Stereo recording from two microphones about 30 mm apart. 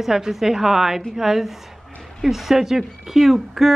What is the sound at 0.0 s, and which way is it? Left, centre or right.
Speech, centre.